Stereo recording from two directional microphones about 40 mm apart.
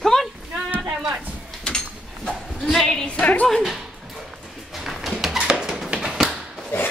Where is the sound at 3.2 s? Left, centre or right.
Left.